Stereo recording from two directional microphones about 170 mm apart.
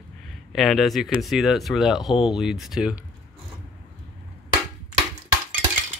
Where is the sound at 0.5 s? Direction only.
Centre (ahead or behind).